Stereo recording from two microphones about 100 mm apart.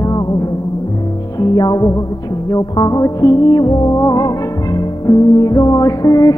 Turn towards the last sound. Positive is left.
turn(degrees=35)  # may be behind; listen again after turning